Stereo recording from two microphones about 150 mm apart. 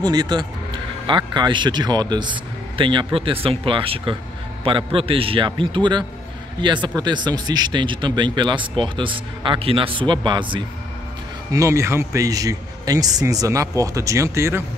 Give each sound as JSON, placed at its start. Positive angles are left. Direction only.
{"t": 0.0, "sound": "a man's voice", "side_deg": -25}
{"t": 11.5, "sound": "a man's voice", "side_deg": -20}